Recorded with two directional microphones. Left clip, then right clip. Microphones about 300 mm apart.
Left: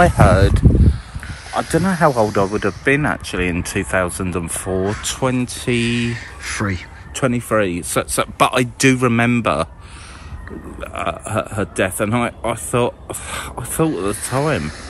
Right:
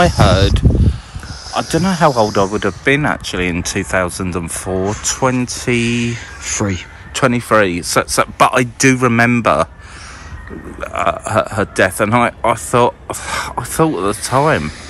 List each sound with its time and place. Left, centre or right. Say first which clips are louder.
0.0 s speech: right 1 dB; centre
0.6 s a sound: even; centre
1.5 s speech: right 2 dB; centre
10.8 s speech: right 7 dB; centre